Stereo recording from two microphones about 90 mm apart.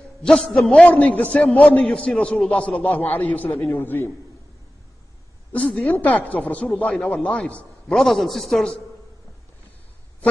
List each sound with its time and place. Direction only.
0.2 s a man's voice: 5° left (ahead or behind)
0.7 s a man's voice: 15° left (ahead or behind)
5.5 s a man's voice: 5° left (ahead or behind)
5.9 s a man's voice: 15° left (ahead or behind)
8.0 s a man's voice: centre (ahead or behind)